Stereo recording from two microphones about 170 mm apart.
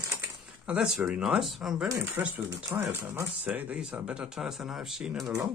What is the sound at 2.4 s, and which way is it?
Speech, 15° right (ahead or behind).